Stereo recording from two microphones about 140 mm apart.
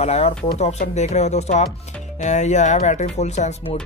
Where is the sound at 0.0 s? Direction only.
50° left (ahead or behind).